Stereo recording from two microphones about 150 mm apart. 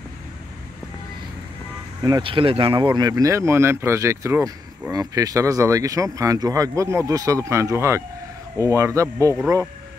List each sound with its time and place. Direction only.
2.0 s speech: 30° right (ahead or behind)